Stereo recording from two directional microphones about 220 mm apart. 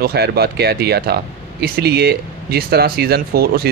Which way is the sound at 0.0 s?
45° right (ahead or behind).